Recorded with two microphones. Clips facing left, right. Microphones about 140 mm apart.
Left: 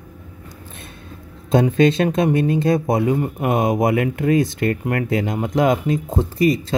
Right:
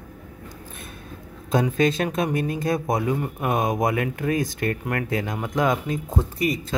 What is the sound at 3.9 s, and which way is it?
Speech, 60° left (ahead or behind).